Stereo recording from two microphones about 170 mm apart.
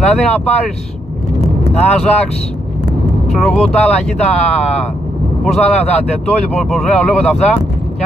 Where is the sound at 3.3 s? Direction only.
Centre (ahead or behind).